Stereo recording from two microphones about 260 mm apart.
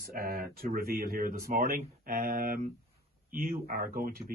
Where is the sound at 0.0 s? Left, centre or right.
Right.